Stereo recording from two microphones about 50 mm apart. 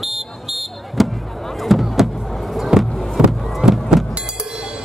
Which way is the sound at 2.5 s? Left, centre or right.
Centre.